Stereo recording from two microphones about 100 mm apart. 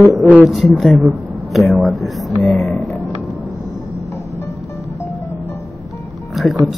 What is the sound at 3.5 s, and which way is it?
Music, 30° left (ahead or behind).